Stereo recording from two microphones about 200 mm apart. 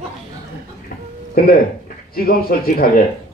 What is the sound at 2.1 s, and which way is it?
Speech, 50° left (ahead or behind).